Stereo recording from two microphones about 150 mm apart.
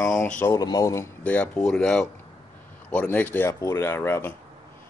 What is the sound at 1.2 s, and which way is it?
Speech, 10° left (ahead or behind).